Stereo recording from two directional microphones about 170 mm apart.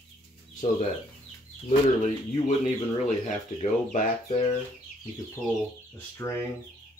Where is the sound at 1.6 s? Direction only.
35° left (ahead or behind).